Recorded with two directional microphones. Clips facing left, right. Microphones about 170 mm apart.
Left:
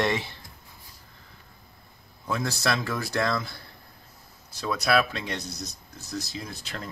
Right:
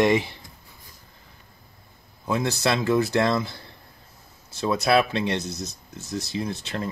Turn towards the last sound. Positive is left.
turn(degrees=-25)  # may be behind; listen again after turning